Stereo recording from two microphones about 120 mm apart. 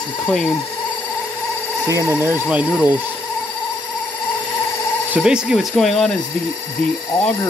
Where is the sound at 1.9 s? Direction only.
25° right (ahead or behind).